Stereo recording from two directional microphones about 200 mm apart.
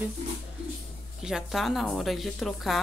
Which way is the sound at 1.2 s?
Centre (ahead or behind).